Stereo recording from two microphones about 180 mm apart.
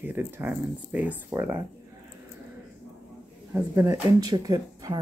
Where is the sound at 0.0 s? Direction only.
10° right (ahead or behind).